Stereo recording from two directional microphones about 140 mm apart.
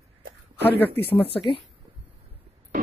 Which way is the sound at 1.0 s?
40° left (ahead or behind).